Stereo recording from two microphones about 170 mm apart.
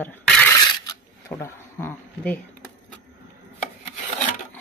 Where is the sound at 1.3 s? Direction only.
15° left (ahead or behind).